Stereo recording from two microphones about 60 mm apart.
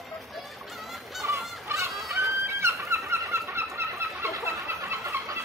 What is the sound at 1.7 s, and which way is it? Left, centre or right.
Fowl, right.